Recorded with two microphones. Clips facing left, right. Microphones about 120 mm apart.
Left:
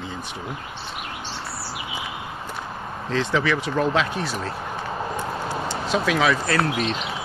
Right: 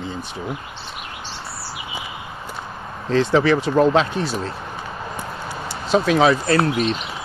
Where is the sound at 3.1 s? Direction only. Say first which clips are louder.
Right 6 dB; 35° right (ahead or behind).